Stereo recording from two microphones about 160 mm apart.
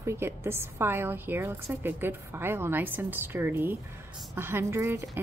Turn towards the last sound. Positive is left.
turn(degrees=-15)  # may be behind; listen again after turning